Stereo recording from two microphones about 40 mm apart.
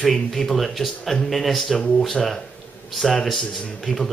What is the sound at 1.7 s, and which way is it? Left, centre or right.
Speech, left.